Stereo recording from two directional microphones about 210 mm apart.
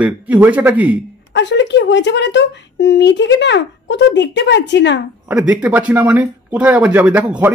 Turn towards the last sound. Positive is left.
turn(degrees=-5)  # may be behind; listen again after turning